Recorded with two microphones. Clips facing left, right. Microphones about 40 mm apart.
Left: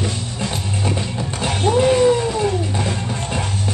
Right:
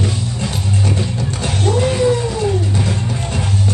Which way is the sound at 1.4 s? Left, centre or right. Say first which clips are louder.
Left 2 dB; centre.